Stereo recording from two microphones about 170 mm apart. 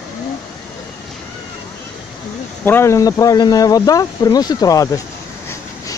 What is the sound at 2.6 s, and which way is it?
Speech, 15° left (ahead or behind).